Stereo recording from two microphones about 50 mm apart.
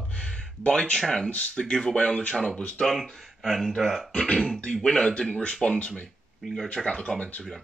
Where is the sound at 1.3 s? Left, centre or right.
Left.